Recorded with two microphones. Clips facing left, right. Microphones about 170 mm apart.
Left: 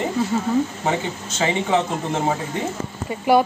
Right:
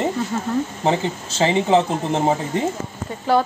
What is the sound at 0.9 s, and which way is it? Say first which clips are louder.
Speech: right 3 dB; 30° right (ahead or behind).